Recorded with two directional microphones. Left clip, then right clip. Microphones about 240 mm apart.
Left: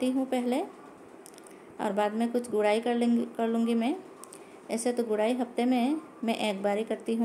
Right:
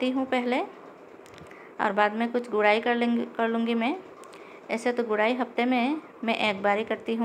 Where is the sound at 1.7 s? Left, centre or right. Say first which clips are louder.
Right 5 dB; centre.